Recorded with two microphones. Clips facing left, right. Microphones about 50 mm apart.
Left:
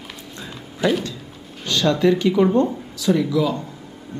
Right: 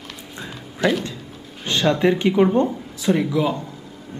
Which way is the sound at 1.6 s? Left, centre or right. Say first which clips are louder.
Left 1 dB; right.